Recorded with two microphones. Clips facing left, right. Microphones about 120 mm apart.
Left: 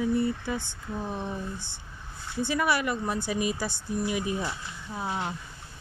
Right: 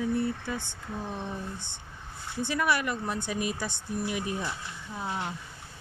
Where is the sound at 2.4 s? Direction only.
10° left (ahead or behind).